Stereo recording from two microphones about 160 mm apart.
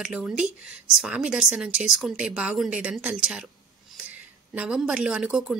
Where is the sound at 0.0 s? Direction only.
5° right (ahead or behind).